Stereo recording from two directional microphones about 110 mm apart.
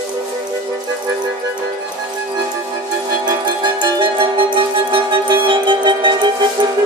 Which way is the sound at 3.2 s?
40° right (ahead or behind).